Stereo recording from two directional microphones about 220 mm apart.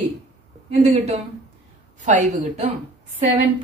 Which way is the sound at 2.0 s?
35° right (ahead or behind).